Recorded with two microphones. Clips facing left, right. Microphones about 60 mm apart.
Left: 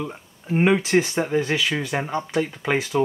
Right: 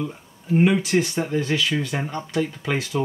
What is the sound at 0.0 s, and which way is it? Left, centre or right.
Speech, left.